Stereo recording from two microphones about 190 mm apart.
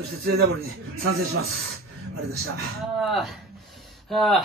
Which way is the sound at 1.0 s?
90° right.